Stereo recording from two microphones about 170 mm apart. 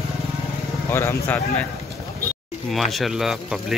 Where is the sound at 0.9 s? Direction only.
15° left (ahead or behind).